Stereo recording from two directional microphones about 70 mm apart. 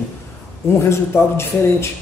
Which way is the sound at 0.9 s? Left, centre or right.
Left.